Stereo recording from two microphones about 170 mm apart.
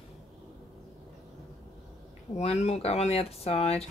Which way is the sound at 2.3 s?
40° left (ahead or behind).